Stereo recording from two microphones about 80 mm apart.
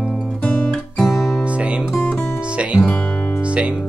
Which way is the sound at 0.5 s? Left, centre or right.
Centre.